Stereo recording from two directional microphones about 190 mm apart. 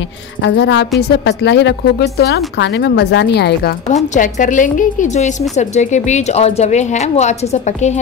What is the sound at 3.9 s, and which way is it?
A woman's voice, 40° left (ahead or behind).